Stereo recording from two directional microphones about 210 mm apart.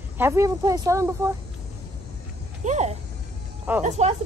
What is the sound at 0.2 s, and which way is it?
Speech, 15° right (ahead or behind).